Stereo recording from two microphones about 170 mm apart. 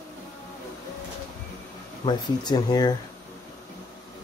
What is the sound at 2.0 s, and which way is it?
Speech, 25° left (ahead or behind).